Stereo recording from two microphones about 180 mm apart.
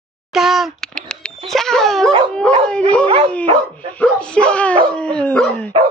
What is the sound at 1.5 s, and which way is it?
Dog, centre (ahead or behind).